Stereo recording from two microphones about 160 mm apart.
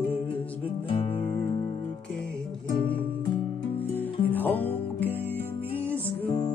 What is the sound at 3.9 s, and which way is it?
Music, 10° left (ahead or behind).